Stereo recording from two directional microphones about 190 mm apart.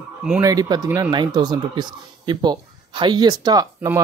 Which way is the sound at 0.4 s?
20° right (ahead or behind).